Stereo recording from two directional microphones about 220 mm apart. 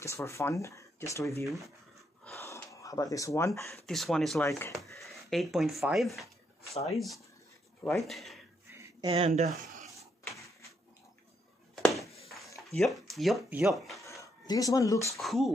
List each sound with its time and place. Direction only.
0.0 s speech: 15° left (ahead or behind)
2.2 s gasp: 15° left (ahead or behind)
3.7 s speech: centre (ahead or behind)
4.5 s speech: 10° left (ahead or behind)
4.9 s speech: centre (ahead or behind)
7.8 s speech: 5° left (ahead or behind)
8.7 s a sound: 15° right (ahead or behind)
9.1 s speech: 30° right (ahead or behind)
11.7 s a sound: centre (ahead or behind)
12.6 s speech: centre (ahead or behind)
14.0 s a sound: 15° left (ahead or behind)
15.1 s speech: centre (ahead or behind)